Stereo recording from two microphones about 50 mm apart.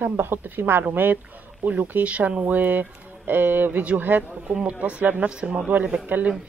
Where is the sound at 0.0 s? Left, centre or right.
Right.